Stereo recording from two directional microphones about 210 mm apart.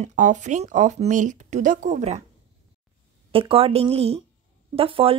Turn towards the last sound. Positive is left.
turn(degrees=-25)  # may be behind; listen again after turning